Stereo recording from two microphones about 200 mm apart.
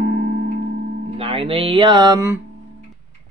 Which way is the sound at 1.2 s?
25° right (ahead or behind).